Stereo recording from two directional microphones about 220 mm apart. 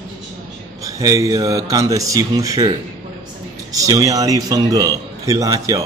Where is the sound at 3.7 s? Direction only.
15° right (ahead or behind).